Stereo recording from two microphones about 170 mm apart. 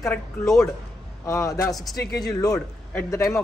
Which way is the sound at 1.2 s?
20° left (ahead or behind).